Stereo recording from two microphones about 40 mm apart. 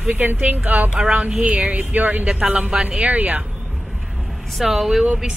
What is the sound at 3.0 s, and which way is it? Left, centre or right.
Speech, right.